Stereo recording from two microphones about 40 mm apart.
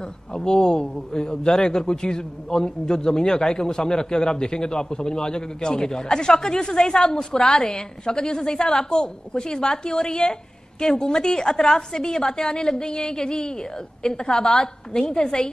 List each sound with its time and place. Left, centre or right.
0.3 s a man's voice: centre